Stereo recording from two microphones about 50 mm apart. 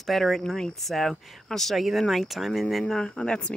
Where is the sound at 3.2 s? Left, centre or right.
Centre.